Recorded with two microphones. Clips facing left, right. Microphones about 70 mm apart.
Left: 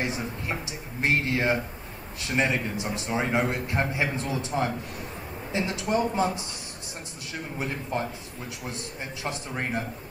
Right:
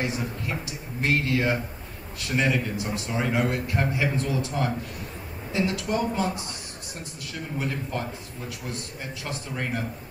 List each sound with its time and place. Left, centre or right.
0.0 s a man's voice: left
7.5 s a man's voice: left
9.2 s a man's voice: left